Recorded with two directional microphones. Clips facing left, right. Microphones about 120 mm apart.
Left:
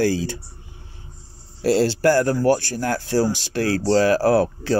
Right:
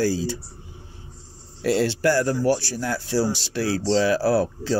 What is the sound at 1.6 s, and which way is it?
Speech, 35° left (ahead or behind).